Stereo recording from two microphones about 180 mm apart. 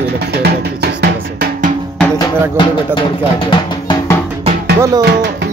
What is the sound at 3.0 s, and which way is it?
Speech, 25° left (ahead or behind).